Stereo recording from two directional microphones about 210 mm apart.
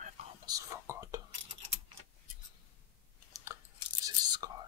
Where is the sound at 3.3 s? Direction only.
10° right (ahead or behind).